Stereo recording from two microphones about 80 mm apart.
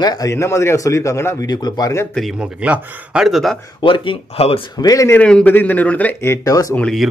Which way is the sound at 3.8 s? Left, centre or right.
Left.